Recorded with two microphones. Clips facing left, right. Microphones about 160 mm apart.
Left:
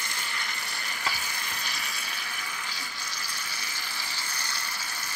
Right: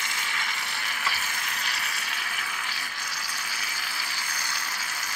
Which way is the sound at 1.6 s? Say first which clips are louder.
Right 2 dB; 75° right (ahead or behind).